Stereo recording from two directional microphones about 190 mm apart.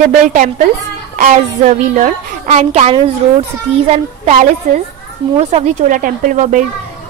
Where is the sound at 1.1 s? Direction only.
40° right (ahead or behind).